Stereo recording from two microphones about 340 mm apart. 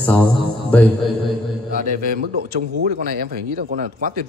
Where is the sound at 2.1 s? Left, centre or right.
Right.